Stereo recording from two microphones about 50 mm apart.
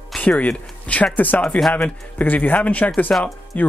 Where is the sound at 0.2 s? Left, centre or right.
Left.